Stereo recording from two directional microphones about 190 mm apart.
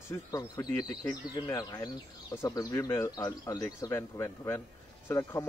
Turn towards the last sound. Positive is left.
turn(degrees=15)  # may be behind; listen again after turning